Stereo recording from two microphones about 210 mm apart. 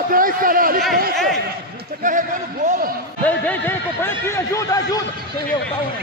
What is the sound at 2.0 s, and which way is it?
Speech, 40° right (ahead or behind).